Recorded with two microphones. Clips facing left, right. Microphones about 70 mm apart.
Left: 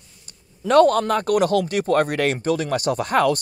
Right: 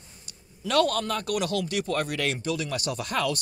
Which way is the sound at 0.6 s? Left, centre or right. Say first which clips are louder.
Left 9 dB; left.